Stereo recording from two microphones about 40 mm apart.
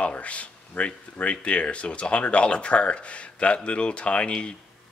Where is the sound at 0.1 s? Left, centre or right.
Left.